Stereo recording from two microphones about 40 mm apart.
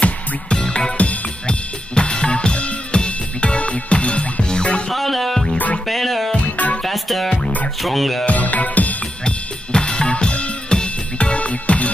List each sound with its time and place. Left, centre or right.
0.0 s music: left
0.9 s music: left
2.0 s drum kit: left
4.9 s music: centre
6.3 s music: left
6.8 s music: centre
8.3 s music: left
9.2 s drum kit: left
10.7 s music: left